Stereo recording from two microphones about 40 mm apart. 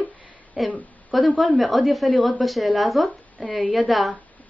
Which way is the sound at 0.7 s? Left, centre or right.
Left.